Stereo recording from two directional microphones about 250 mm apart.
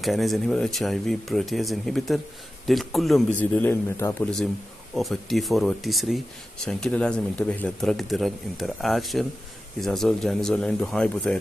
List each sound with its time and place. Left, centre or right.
0.0 s a man's voice: centre